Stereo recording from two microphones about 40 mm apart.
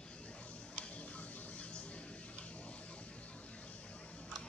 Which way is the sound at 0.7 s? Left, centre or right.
Left.